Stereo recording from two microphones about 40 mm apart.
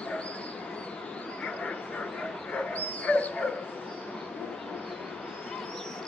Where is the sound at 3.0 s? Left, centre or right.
Left.